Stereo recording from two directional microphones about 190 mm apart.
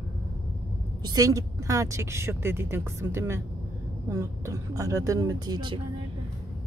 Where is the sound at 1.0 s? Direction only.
20° right (ahead or behind).